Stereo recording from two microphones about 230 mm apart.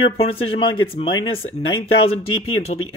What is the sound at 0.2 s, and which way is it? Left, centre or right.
Speech, left.